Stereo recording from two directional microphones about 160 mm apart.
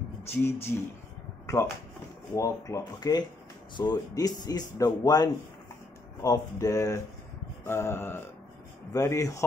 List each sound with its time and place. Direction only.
0.2 s speech: 15° left (ahead or behind)
2.3 s speech: 20° left (ahead or behind)